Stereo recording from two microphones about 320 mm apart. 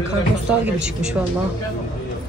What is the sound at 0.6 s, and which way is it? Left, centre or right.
Speech, centre.